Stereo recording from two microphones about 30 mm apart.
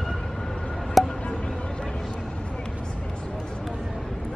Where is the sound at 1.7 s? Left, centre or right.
Left.